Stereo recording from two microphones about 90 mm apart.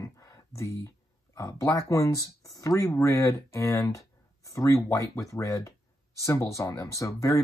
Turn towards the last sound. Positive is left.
turn(degrees=35)  # may be behind; listen again after turning